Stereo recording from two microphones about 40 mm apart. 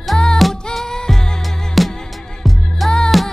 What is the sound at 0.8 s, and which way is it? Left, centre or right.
Music, centre.